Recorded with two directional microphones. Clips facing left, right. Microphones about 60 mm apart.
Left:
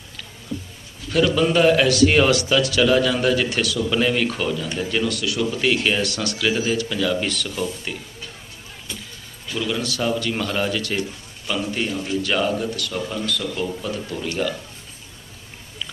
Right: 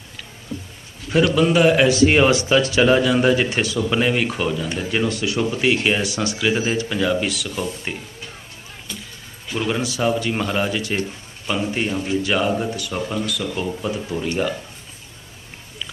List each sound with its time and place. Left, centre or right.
1.3 s speech: centre; by 3.0 s right
3.0 s speech: centre
5.6 s speech: centre
7.2 s speech: centre
7.9 s speech: right
9.5 s speech: right